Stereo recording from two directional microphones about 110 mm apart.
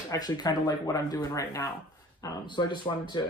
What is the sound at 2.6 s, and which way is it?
Speech, 45° left (ahead or behind).